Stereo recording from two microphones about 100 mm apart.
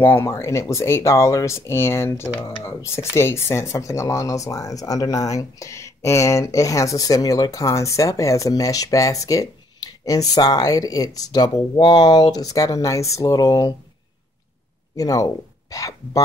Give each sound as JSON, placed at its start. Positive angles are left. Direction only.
{"t": 0.0, "sound": "speech", "side_deg": 25}
{"t": 15.0, "sound": "speech", "side_deg": 35}